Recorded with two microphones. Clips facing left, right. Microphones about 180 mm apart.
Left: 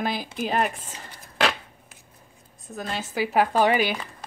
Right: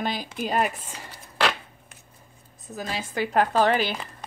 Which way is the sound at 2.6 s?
Centre (ahead or behind).